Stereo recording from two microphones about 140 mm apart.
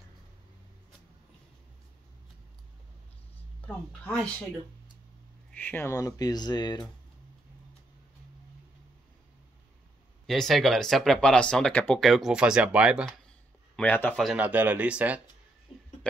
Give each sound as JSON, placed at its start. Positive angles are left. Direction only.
{"t": 3.6, "sound": "speech", "side_deg": 10}
{"t": 5.5, "sound": "speech", "side_deg": 15}
{"t": 10.2, "sound": "speech", "side_deg": 0}
{"t": 13.7, "sound": "speech", "side_deg": 10}
{"t": 14.2, "sound": "speech", "side_deg": -10}
{"t": 15.7, "sound": "a sound", "side_deg": 40}